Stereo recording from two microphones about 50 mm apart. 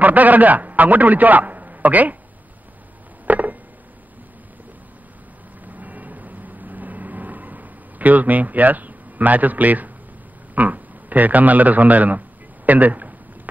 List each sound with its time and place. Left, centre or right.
0.0 s a man's voice: right
3.3 s a sound: right
5.7 s vehicle: right
10.5 s a man's voice: right